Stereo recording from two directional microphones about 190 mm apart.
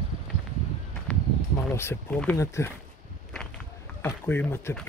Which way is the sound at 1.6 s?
10° left (ahead or behind).